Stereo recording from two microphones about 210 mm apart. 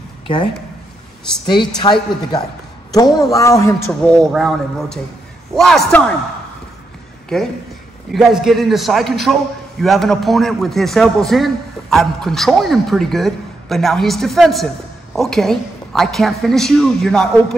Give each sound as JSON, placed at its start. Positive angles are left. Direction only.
{"t": 1.4, "sound": "a man's voice", "side_deg": 20}
{"t": 7.3, "sound": "a man's voice", "side_deg": 0}